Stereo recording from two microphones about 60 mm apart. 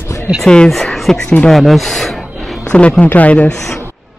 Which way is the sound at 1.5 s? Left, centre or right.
Centre.